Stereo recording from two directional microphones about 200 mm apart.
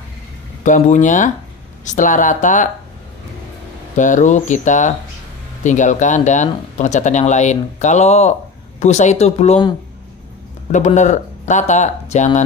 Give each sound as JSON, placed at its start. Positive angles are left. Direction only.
{"t": 0.7, "sound": "speech", "side_deg": 40}
{"t": 3.9, "sound": "speech", "side_deg": 40}
{"t": 10.7, "sound": "speech", "side_deg": 35}